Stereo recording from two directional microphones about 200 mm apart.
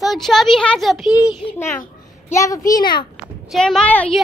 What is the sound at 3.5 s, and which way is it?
Speech, 5° left (ahead or behind).